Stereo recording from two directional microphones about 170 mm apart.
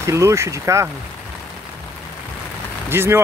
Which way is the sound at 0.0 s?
15° right (ahead or behind).